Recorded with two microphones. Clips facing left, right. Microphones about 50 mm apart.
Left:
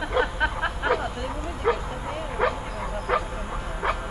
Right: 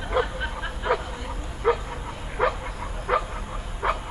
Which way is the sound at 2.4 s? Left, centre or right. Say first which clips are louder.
Right 1 dB; left.